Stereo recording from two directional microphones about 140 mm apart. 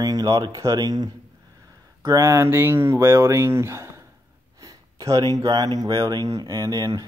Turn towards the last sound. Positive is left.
turn(degrees=-25)  # may be behind; listen again after turning